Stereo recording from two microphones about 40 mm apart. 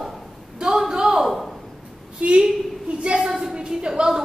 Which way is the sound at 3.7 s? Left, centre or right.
Right.